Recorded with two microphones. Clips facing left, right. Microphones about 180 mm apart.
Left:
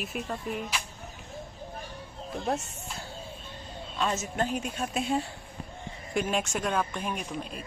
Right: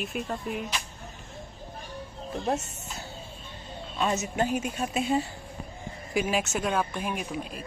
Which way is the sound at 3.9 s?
10° right (ahead or behind).